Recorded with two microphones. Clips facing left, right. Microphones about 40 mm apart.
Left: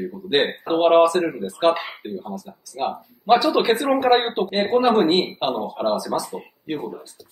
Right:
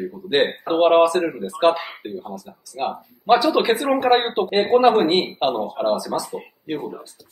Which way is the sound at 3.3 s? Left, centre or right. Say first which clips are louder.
Even; centre.